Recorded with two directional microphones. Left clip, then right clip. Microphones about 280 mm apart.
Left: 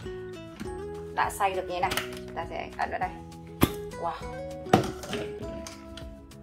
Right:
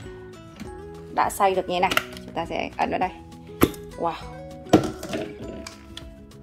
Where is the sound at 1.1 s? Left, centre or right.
Right.